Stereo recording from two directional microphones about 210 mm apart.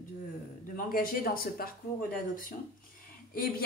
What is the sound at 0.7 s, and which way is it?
Speech, 40° left (ahead or behind).